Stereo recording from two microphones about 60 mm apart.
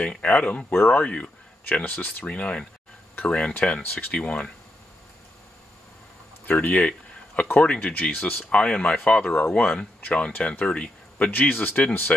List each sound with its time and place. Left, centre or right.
0.0 s speech: centre
0.7 s speech: left
1.0 s speech: left
6.4 s speech: left
6.7 s speech: left